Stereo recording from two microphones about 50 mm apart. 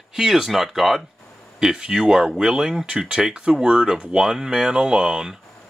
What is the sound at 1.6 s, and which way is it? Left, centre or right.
Speech, centre.